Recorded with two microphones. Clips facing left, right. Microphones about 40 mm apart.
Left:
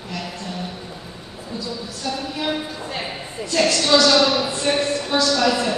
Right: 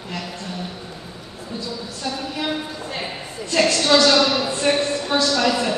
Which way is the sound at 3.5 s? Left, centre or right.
Right.